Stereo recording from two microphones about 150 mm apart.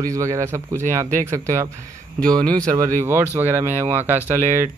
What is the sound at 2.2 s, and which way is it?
Speech, 5° left (ahead or behind).